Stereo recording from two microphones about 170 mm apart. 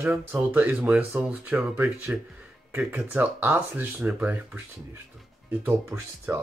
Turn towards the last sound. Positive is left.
turn(degrees=-10)  # may be behind; listen again after turning